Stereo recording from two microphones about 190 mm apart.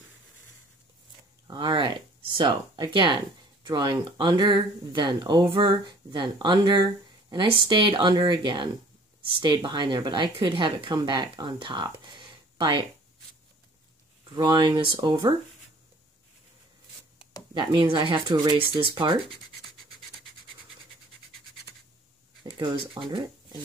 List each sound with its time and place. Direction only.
1.5 s speech: 25° right (ahead or behind)
9.4 s speech: 25° right (ahead or behind)
14.2 s speech: 25° right (ahead or behind)
17.6 s speech: 25° right (ahead or behind)
22.4 s speech: 25° right (ahead or behind)